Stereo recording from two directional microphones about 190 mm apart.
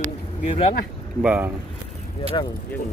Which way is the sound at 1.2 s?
5° right (ahead or behind).